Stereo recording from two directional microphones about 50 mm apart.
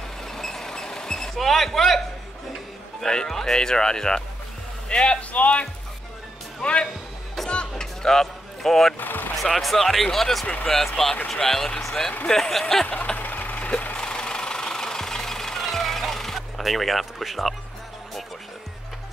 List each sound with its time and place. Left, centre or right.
0.2 s a sound: centre
3.0 s speech: centre
7.4 s music: centre
7.7 s a sound: centre
9.0 s speech: left
9.4 s speech: centre
10.4 s speech: centre
10.7 s speech: centre
12.9 s vehicle: left
13.2 s vehicle: left
13.7 s engine knocking: left; by 17.6 s centre